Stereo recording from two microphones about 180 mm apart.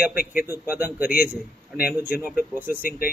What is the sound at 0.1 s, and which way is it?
Speech, 55° left (ahead or behind).